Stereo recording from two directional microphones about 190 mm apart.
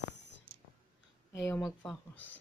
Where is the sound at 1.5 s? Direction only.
15° left (ahead or behind).